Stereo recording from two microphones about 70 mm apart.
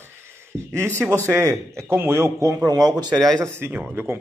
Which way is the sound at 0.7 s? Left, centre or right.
Right.